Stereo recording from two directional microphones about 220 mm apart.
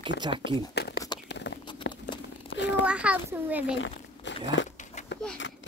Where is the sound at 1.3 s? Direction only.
55° left (ahead or behind).